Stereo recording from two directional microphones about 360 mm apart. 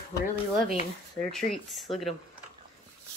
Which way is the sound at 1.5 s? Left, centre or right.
Centre.